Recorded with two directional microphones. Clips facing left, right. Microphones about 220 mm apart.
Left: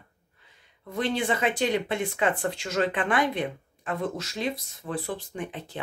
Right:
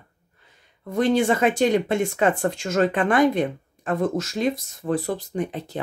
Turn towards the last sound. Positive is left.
turn(degrees=-40)  # may be behind; listen again after turning